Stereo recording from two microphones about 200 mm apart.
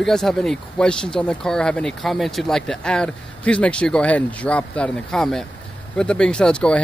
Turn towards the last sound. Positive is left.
turn(degrees=5)  # may be behind; listen again after turning